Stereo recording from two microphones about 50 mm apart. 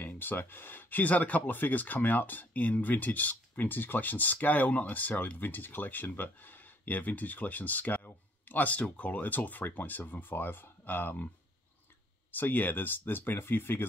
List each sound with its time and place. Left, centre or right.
0.0 s speech: left
12.3 s speech: left